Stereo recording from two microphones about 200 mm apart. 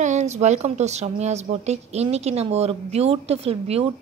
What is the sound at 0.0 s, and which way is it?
A woman's voice, 35° right (ahead or behind).